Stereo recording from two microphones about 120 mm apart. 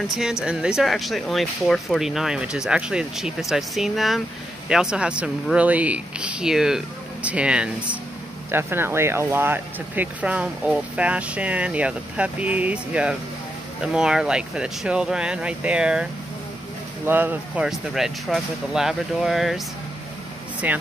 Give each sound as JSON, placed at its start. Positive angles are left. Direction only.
{"t": 0.1, "sound": "speech", "side_deg": -5}
{"t": 17.6, "sound": "speech", "side_deg": -5}
{"t": 20.6, "sound": "speech", "side_deg": -15}